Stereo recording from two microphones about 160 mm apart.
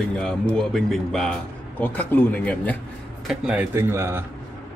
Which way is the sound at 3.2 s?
5° right (ahead or behind).